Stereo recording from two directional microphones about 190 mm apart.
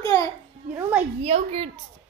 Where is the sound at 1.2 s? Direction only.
30° right (ahead or behind).